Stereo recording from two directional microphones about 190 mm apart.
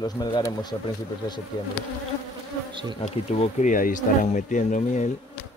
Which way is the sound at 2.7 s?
25° right (ahead or behind).